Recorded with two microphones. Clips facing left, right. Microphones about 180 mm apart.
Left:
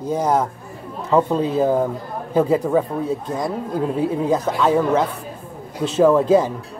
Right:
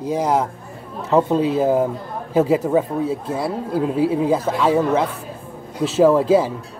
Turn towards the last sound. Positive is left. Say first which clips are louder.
# even
turn(degrees=-5)  # may be behind; listen again after turning